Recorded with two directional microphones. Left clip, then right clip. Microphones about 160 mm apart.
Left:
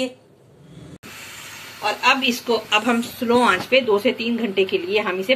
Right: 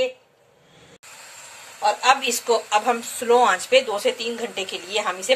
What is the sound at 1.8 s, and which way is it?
Speech, 85° right.